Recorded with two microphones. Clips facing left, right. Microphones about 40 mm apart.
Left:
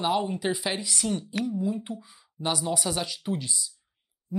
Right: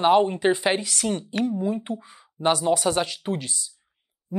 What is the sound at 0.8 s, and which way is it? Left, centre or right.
Speech, right.